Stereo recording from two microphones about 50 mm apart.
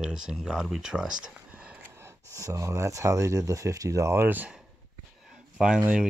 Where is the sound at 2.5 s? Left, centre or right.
Right.